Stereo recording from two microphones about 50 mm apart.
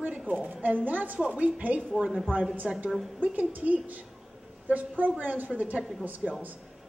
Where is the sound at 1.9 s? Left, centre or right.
Centre.